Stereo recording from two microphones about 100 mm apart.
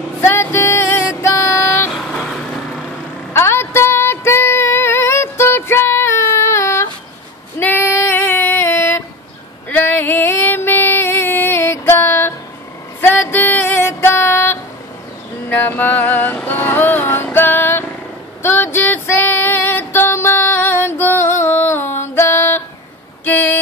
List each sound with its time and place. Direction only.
0.2 s music: 25° left (ahead or behind)
1.9 s vehicle: centre (ahead or behind)
3.3 s female singing: 25° left (ahead or behind)
13.0 s music: 20° left (ahead or behind)
18.4 s female singing: 25° left (ahead or behind)
23.2 s a sound: 20° left (ahead or behind)